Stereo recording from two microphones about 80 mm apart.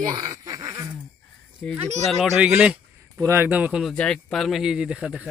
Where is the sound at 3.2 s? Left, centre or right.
Right.